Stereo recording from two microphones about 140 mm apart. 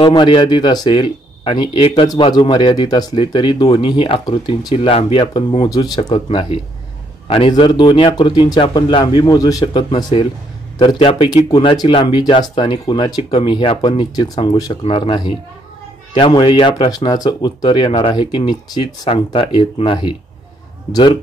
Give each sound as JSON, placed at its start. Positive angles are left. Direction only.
{"t": 0.0, "sound": "speech", "side_deg": 35}
{"t": 4.7, "sound": "speech", "side_deg": 40}
{"t": 9.8, "sound": "speech", "side_deg": 40}